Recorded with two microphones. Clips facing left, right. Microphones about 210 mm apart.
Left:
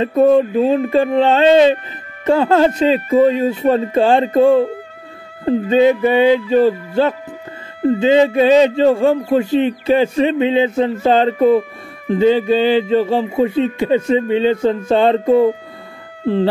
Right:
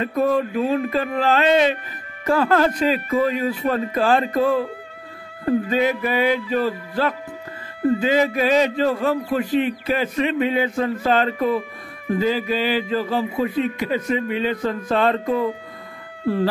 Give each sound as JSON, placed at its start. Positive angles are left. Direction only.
{"t": 0.0, "sound": "a man's voice", "side_deg": 25}